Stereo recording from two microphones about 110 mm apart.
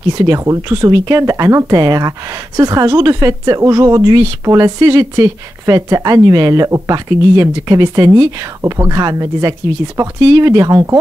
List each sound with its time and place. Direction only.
0.2 s speech: 30° right (ahead or behind)